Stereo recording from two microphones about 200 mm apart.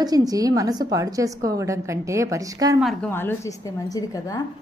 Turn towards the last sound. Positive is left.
turn(degrees=20)  # may be behind; listen again after turning